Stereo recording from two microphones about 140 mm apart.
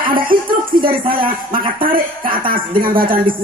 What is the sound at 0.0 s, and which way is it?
A man's voice, 90° right.